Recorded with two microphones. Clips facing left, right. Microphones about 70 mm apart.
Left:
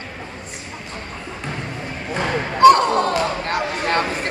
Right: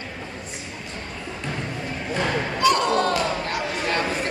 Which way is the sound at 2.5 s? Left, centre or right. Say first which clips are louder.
Left 9 dB; left.